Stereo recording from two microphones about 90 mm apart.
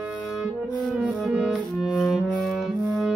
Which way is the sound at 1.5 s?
Centre (ahead or behind).